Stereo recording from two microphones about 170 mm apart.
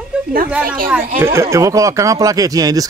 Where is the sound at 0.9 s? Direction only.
15° right (ahead or behind).